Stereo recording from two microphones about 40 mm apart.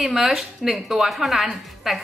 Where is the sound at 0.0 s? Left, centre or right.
Centre.